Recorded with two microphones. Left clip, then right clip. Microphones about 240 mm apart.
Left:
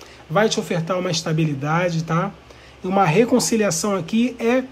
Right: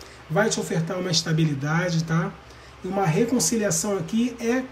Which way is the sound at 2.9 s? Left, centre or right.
Left.